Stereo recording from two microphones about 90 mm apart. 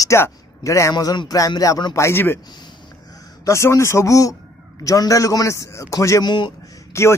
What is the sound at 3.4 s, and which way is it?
Speech, 35° left (ahead or behind).